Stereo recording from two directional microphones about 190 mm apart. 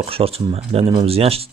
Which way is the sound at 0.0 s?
30° right (ahead or behind).